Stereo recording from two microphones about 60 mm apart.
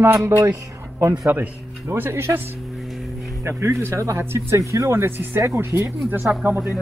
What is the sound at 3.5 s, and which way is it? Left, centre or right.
Speech, right.